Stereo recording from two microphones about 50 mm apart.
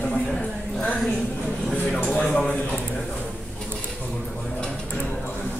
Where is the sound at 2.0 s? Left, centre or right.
Left.